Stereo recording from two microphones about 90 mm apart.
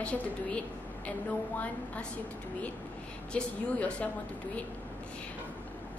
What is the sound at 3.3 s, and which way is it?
Speech, 10° left (ahead or behind).